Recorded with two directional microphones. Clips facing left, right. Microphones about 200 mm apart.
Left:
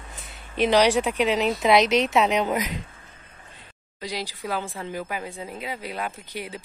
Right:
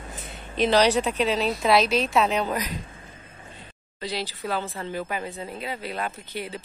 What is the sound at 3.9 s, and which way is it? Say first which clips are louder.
Speech: right 1 dB; 10° left (ahead or behind).